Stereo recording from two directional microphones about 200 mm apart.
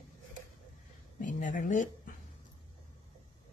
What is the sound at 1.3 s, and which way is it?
Speech, 40° left (ahead or behind).